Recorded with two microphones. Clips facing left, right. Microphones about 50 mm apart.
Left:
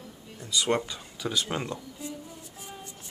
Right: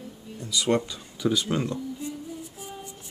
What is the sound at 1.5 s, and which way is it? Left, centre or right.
Speech, centre.